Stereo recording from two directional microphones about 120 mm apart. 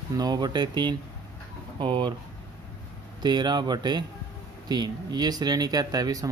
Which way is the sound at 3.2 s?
35° right (ahead or behind).